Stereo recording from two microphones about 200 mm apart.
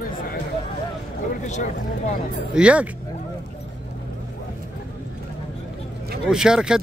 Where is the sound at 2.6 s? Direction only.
5° right (ahead or behind).